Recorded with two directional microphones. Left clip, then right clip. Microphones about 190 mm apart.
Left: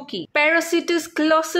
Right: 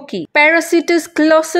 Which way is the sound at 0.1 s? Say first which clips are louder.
Right 7 dB; 30° right (ahead or behind).